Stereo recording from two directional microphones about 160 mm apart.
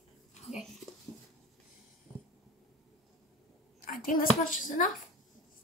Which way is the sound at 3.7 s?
60° left (ahead or behind).